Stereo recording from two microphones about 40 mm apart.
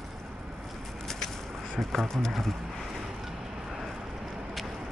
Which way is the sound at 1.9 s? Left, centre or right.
Centre.